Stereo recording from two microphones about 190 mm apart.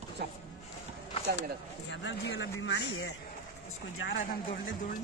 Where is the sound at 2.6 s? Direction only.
75° left (ahead or behind).